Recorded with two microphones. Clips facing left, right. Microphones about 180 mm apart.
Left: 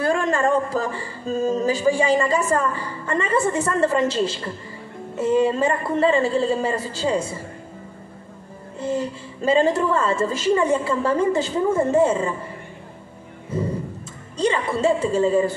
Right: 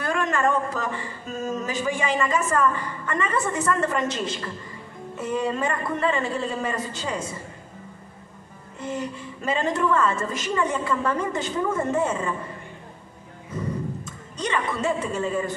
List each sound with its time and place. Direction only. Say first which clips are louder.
0.0 s music: left 4 dB; 30° left (ahead or behind)
5.1 s a woman's voice: left 7 dB; 25° left (ahead or behind)
8.7 s a woman's voice: left 5 dB; 30° left (ahead or behind)
13.5 s a sound: left 6 dB; 30° left (ahead or behind)
14.3 s a woman's voice: left 6 dB; 30° left (ahead or behind)